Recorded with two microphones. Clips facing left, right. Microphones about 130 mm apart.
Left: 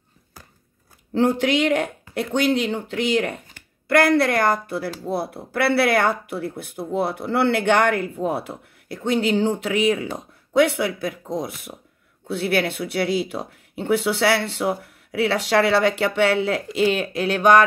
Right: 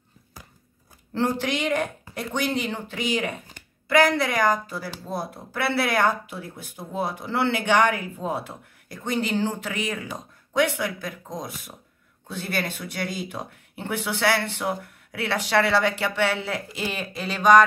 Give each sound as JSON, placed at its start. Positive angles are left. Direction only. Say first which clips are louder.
{"t": 1.2, "sound": "speech", "louder": "left 6 dB", "side_deg": 60}